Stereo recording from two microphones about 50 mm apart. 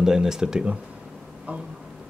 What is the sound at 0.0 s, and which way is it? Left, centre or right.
Speech, centre.